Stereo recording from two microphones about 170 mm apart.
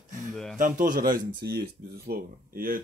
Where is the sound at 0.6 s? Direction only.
50° right (ahead or behind).